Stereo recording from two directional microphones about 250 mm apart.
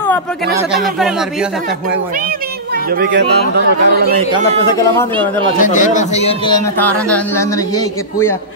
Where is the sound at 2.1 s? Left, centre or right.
Right.